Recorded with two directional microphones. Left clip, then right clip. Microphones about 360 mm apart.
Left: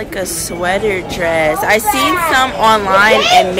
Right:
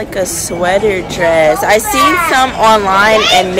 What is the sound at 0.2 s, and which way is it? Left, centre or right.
Speech, centre.